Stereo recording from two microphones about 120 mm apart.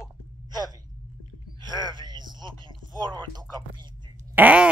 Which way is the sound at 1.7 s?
40° right (ahead or behind).